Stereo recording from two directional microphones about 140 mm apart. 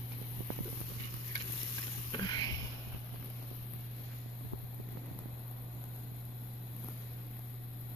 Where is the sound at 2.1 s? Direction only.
30° left (ahead or behind).